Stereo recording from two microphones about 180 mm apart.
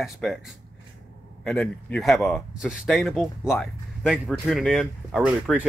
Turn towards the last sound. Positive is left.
turn(degrees=0)  # may be behind; listen again after turning